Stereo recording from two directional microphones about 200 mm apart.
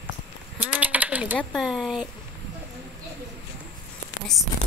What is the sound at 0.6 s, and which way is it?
Typing, 10° right (ahead or behind).